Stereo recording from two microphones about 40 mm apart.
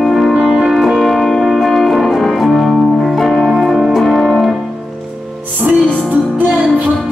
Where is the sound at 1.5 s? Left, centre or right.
Centre.